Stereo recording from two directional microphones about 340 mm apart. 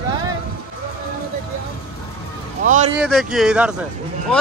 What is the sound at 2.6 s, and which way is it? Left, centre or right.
Speech, right.